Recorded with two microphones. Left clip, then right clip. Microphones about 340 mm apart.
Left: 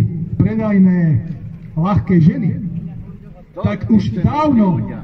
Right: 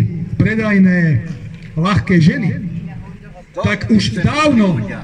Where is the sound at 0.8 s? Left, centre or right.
Centre.